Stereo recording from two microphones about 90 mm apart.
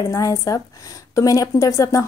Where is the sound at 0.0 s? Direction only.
40° left (ahead or behind).